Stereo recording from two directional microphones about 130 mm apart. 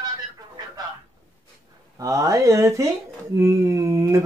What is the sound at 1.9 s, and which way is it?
Speech, 25° right (ahead or behind).